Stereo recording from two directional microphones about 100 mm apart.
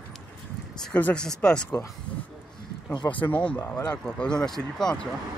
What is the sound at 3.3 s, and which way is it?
Speech, 15° left (ahead or behind).